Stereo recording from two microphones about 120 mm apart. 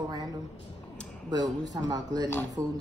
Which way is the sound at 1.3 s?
35° right (ahead or behind).